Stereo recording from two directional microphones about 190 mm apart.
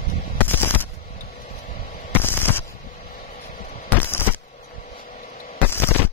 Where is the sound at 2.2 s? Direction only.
10° left (ahead or behind).